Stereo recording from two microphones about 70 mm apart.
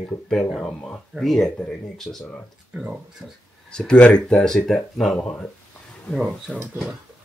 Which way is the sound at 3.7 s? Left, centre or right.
Centre.